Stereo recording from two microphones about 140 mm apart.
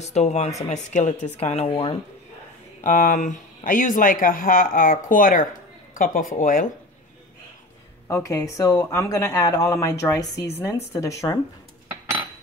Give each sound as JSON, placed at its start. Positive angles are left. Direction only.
{"t": 0.0, "sound": "speech", "side_deg": 55}
{"t": 2.8, "sound": "speech", "side_deg": 70}
{"t": 8.1, "sound": "speech", "side_deg": 25}